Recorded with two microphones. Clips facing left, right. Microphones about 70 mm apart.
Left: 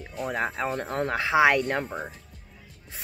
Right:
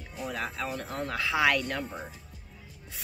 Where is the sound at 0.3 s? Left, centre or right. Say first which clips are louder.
Left 6 dB; left.